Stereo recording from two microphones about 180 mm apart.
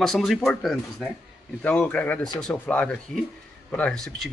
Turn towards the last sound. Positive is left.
turn(degrees=5)  # may be behind; listen again after turning